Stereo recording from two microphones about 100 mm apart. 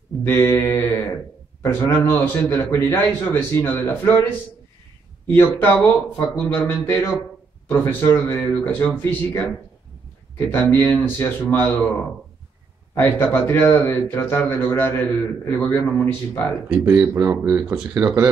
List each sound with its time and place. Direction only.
0.2 s speech: 25° left (ahead or behind)
5.3 s speech: 20° left (ahead or behind)
16.6 s speech: 20° right (ahead or behind)